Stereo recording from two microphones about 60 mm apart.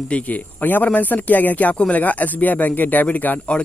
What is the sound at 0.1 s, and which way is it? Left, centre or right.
A man's voice, left.